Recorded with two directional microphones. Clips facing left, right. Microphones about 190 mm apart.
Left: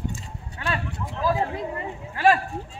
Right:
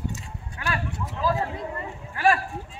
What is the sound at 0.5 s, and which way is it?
Clip-clop, 30° left (ahead or behind).